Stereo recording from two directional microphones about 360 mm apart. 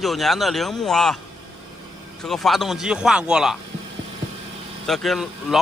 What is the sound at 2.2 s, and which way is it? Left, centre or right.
Speech, centre.